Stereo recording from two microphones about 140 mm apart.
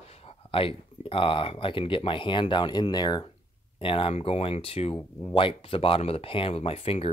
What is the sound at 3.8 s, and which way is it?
Speech, 40° left (ahead or behind).